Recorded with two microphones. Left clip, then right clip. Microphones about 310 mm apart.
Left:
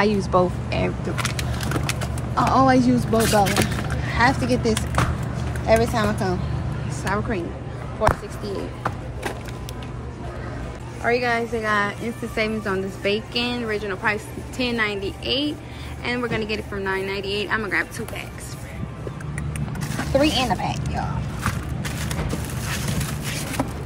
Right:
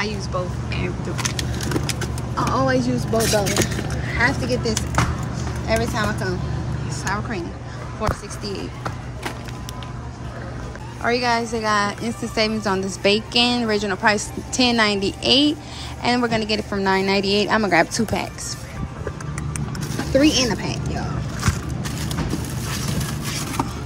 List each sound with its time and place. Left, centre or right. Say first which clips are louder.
0.0 s speech: left 7 dB; centre
2.3 s speech: left 3 dB; centre
3.2 s speech: left 1 dB; left
4.0 s a woman's voice: left 1 dB; centre
11.0 s a woman's voice: right 1 dB; centre
20.2 s a woman's voice: right 2 dB; centre